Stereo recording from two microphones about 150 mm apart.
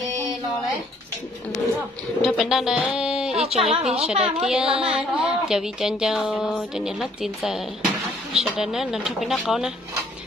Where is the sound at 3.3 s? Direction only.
40° right (ahead or behind).